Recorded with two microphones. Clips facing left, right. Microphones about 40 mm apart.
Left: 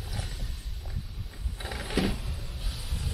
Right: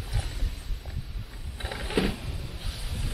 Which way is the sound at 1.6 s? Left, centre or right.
Centre.